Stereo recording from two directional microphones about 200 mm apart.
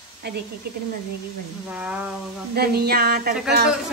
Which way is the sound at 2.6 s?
50° right (ahead or behind).